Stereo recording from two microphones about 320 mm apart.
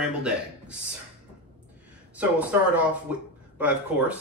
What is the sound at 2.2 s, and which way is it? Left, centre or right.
Speech, centre.